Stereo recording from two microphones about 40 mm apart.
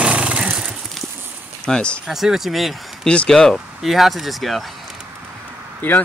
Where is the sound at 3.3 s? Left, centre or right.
Centre.